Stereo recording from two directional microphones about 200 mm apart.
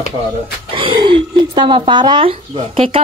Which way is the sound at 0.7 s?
25° right (ahead or behind).